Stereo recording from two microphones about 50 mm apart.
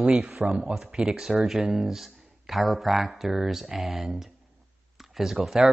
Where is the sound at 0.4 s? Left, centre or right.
Centre.